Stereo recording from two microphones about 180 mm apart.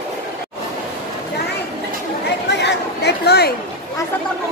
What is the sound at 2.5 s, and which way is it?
Chatter, 70° left (ahead or behind).